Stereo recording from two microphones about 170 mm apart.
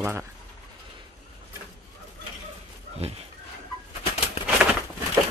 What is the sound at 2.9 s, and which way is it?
Speech, 35° right (ahead or behind).